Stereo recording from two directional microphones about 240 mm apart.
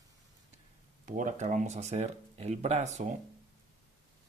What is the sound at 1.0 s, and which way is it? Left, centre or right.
Speech, right.